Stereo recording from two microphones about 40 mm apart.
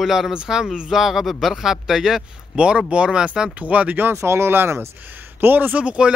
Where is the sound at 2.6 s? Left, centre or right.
Right.